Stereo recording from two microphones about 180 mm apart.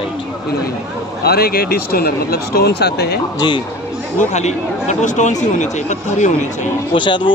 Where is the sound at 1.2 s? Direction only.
60° left (ahead or behind).